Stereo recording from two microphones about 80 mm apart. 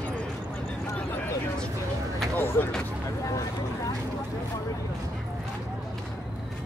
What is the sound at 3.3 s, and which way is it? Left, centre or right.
Vehicle, left.